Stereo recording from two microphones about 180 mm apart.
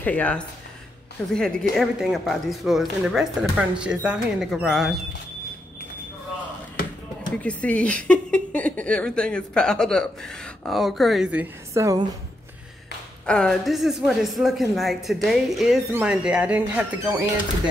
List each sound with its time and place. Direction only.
0.0 s speech: 10° left (ahead or behind)
7.2 s speech: 5° left (ahead or behind)
11.7 s speech: 20° right (ahead or behind)
13.3 s speech: 5° left (ahead or behind)